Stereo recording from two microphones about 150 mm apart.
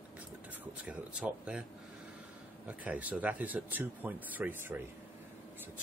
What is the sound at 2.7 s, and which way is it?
Speech, 10° right (ahead or behind).